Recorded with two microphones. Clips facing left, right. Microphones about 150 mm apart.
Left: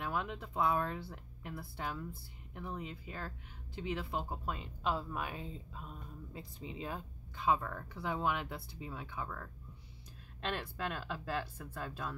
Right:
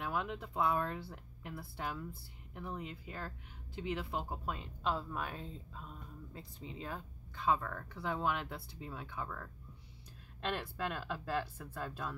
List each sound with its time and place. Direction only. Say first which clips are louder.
0.0 s speech: even; centre (ahead or behind)